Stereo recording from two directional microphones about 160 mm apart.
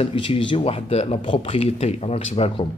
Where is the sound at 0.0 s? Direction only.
35° left (ahead or behind).